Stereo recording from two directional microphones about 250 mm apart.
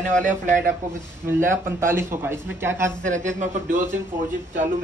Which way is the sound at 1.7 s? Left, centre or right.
Centre.